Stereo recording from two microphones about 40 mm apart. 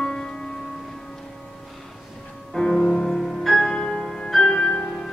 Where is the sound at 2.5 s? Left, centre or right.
Centre.